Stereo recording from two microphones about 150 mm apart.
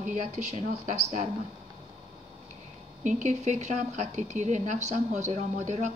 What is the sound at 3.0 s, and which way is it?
A woman's voice, 50° right (ahead or behind).